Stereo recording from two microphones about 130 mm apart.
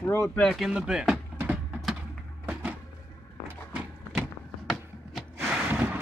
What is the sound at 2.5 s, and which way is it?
Cupboard open or close, 10° right (ahead or behind).